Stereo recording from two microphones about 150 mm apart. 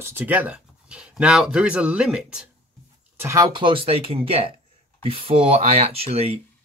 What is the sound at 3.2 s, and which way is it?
Speech, 20° right (ahead or behind).